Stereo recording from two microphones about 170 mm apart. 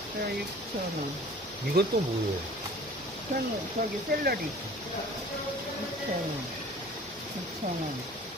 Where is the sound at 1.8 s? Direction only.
70° right (ahead or behind).